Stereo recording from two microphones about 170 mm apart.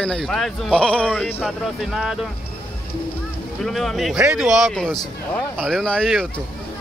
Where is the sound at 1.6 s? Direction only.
Centre (ahead or behind).